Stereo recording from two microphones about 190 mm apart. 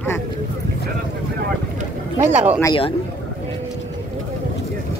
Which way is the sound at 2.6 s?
25° left (ahead or behind).